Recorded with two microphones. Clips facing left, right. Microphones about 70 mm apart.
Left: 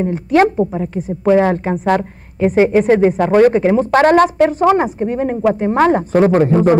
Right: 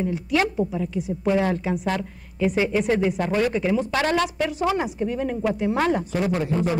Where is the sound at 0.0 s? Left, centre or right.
Left.